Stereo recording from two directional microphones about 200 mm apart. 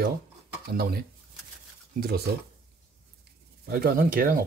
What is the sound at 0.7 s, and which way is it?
Speech, 50° right (ahead or behind).